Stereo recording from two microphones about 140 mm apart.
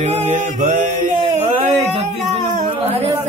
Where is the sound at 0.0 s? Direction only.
55° right (ahead or behind).